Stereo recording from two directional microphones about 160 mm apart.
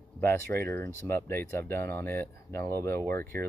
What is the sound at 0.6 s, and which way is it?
Speech, 15° left (ahead or behind).